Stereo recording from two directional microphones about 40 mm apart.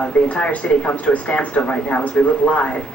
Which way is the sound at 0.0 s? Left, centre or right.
Left.